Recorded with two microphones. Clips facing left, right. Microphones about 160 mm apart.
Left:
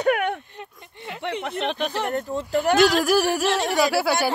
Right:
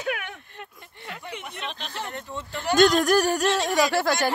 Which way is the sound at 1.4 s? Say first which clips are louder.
Left 10 dB; 65° left (ahead or behind).